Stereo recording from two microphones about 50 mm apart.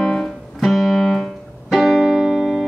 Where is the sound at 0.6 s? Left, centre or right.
Centre.